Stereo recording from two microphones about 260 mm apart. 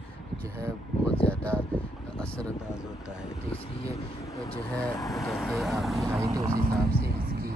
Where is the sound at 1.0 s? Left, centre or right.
Centre.